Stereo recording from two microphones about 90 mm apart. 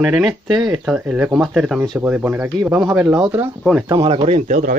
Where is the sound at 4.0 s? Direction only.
90° right.